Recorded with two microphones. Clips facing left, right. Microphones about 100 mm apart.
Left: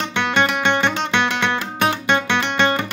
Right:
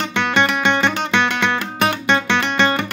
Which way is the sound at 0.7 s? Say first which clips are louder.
Right 1 dB; 20° left (ahead or behind).